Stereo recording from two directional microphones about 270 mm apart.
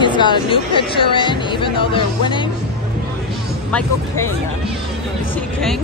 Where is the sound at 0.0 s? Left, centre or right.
Centre.